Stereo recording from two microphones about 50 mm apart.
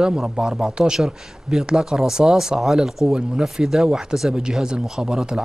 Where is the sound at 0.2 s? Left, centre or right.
Centre.